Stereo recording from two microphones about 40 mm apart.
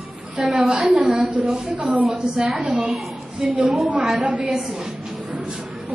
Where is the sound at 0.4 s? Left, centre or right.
Centre.